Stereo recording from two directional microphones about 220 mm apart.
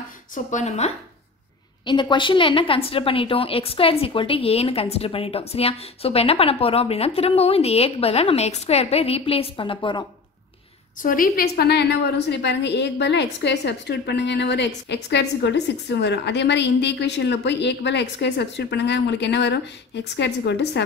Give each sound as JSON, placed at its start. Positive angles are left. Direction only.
{"t": 0.3, "sound": "a woman's voice", "side_deg": 35}
{"t": 11.0, "sound": "a woman's voice", "side_deg": 40}